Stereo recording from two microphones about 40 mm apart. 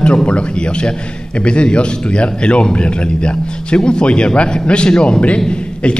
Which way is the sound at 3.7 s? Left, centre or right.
Left.